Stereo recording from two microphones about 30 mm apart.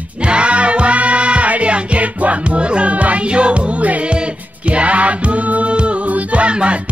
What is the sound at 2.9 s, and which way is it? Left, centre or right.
Music, right.